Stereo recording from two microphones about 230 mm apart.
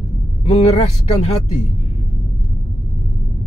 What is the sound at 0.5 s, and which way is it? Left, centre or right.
Speech, left.